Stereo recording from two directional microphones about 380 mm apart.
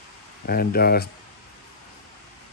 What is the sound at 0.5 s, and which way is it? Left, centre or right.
Speech, left.